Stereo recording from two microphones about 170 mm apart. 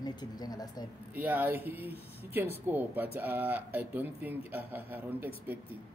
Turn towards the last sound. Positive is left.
turn(degrees=-10)  # may be behind; listen again after turning